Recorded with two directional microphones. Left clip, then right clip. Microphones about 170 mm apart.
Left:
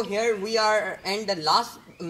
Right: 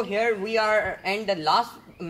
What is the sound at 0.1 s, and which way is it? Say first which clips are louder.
Speech: right 1 dB; 10° right (ahead or behind).